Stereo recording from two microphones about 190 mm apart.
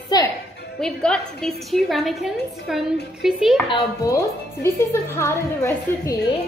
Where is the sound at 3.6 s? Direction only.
20° left (ahead or behind).